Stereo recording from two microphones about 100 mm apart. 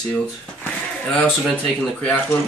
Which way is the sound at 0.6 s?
10° left (ahead or behind).